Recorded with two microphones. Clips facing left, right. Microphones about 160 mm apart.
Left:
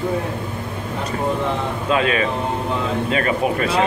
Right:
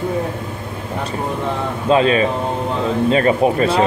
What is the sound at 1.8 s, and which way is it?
Speech, 30° right (ahead or behind).